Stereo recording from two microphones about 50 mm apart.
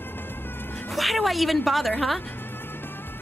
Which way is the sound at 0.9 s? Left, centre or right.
Centre.